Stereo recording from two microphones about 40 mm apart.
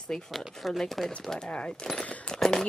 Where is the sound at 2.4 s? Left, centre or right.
Centre.